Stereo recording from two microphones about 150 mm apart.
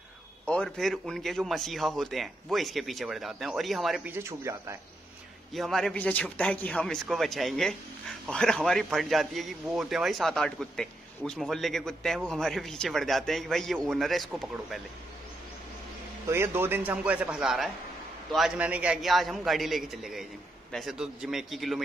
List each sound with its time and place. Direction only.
0.5 s a man's voice: 5° left (ahead or behind)
4.1 s a man's voice: 15° right (ahead or behind)
5.5 s a man's voice: centre (ahead or behind)
16.3 s a man's voice: 15° right (ahead or behind); by 21.8 s centre (ahead or behind)